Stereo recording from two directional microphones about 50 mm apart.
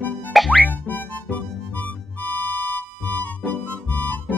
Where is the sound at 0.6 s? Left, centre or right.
Left.